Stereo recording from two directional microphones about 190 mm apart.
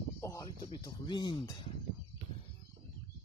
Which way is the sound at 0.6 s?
25° left (ahead or behind).